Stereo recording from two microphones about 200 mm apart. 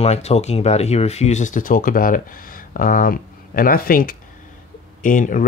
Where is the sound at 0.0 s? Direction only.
30° left (ahead or behind).